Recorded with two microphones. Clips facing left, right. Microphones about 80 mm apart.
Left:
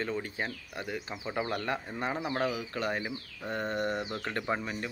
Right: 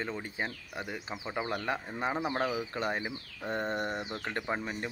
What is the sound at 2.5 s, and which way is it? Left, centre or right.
Speech, right.